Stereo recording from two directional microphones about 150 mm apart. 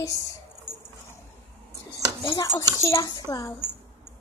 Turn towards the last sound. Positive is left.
turn(degrees=25)  # may be behind; listen again after turning